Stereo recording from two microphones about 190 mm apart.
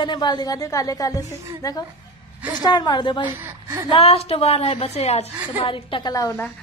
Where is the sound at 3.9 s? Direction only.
30° left (ahead or behind).